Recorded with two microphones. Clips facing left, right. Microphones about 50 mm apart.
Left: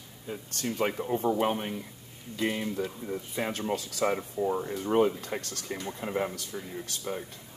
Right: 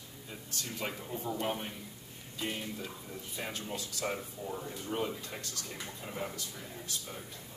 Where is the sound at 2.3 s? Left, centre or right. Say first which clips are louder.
Left 8 dB; left.